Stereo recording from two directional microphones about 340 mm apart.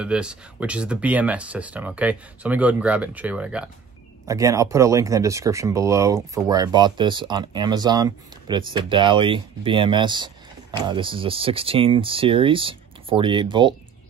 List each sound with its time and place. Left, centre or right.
0.0 s speech: centre